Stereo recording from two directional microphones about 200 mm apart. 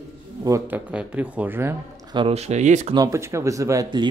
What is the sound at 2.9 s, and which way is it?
Speech, 15° right (ahead or behind).